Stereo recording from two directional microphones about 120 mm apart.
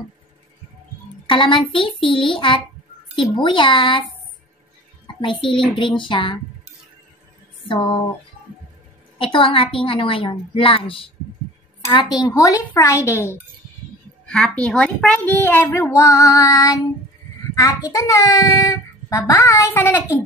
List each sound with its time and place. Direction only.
1.2 s a woman's voice: 45° left (ahead or behind)
5.4 s a woman's voice: 45° left (ahead or behind)
9.2 s a woman's voice: 45° left (ahead or behind)
11.9 s a child's voice: 35° left (ahead or behind)
14.2 s a child's voice: 10° left (ahead or behind)